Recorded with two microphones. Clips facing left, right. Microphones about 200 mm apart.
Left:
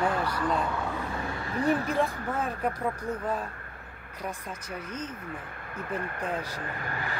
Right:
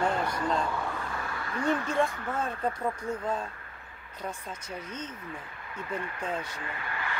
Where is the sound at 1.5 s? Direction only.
35° left (ahead or behind).